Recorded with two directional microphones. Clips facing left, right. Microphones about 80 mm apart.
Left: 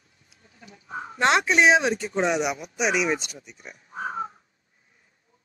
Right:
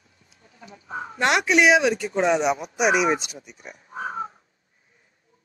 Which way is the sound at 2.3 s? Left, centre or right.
Right.